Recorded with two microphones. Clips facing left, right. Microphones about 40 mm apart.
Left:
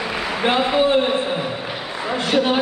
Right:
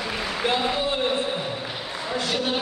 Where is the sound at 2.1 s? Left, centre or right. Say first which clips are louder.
Left 7 dB; left.